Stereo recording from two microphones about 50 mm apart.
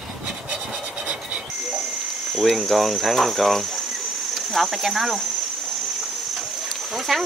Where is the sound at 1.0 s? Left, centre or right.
Right.